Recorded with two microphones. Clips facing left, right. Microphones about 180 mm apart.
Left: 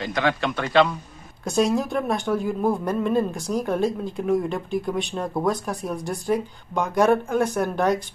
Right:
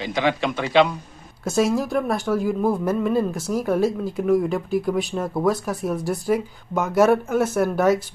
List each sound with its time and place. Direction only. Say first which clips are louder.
0.0 s a woman's voice: right 2 dB; centre (ahead or behind)